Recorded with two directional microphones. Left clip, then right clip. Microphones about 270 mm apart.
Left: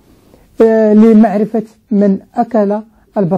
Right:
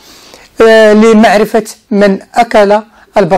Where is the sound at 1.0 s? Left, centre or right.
Right.